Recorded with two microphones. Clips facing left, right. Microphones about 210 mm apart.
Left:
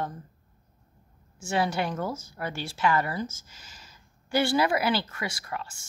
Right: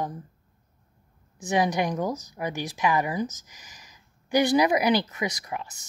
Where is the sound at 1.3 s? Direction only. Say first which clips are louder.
Right 3 dB; 15° right (ahead or behind).